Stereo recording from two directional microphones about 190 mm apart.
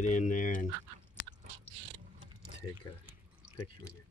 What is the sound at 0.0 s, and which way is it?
Speech, 40° left (ahead or behind).